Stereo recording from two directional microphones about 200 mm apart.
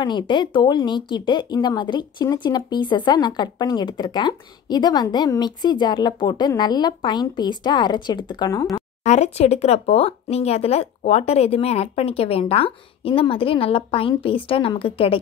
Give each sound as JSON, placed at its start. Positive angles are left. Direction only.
{"t": 0.0, "sound": "speech", "side_deg": 20}
{"t": 9.0, "sound": "speech", "side_deg": 35}